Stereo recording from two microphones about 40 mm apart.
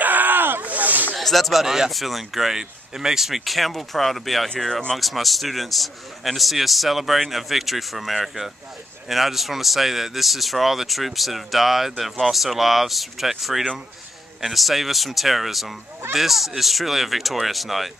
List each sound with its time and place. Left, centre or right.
0.0 s snake: right
1.1 s a man's voice: centre